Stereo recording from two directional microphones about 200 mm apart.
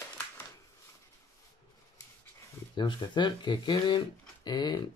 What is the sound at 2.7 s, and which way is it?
Speech, 25° left (ahead or behind).